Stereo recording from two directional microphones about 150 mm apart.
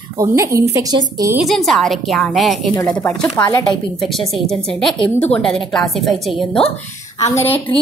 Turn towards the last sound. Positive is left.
turn(degrees=15)  # may be behind; listen again after turning